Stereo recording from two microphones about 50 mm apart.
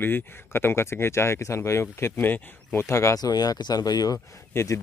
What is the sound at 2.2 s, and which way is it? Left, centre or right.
Speech, left.